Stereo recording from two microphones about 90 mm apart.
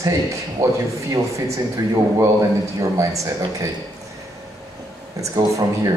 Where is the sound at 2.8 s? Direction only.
40° right (ahead or behind).